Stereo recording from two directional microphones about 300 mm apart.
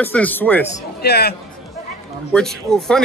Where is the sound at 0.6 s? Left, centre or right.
Left.